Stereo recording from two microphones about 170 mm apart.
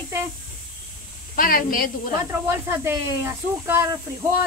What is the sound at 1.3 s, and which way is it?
Speech, 55° left (ahead or behind).